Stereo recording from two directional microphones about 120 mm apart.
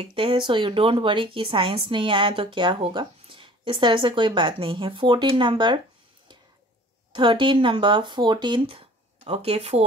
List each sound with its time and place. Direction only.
0.0 s speech: 50° right (ahead or behind)
7.1 s speech: 45° right (ahead or behind)